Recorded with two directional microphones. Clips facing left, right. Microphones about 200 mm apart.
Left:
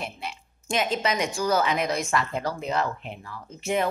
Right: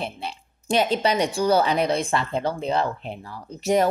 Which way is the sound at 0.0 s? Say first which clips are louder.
Right 4 dB; 30° right (ahead or behind).